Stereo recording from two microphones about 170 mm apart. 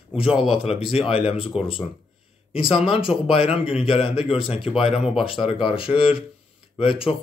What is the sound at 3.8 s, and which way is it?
Speech, 35° left (ahead or behind).